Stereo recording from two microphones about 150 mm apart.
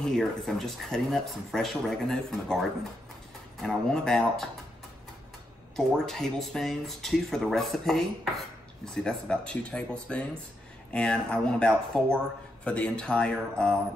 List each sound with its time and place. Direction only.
0.0 s speech: centre (ahead or behind)
3.6 s speech: 5° left (ahead or behind)
5.8 s speech: 5° left (ahead or behind)